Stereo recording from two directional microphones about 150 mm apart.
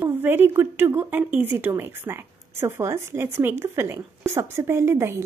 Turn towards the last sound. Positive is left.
turn(degrees=-20)  # may be behind; listen again after turning